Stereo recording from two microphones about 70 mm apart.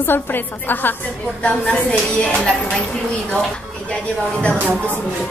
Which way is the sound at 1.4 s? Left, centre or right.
Centre.